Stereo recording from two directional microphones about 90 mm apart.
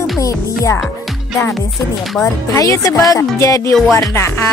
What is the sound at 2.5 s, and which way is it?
Speech, 35° left (ahead or behind).